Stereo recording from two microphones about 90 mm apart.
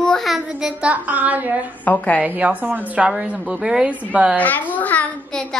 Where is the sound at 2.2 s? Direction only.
15° right (ahead or behind).